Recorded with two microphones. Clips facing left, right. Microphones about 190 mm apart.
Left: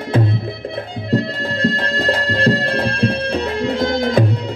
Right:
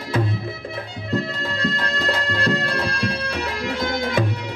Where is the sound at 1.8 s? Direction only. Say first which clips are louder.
Left 5 dB; 35° left (ahead or behind).